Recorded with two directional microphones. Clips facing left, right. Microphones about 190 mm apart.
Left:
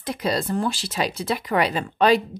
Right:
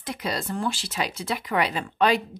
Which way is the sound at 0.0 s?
35° left (ahead or behind).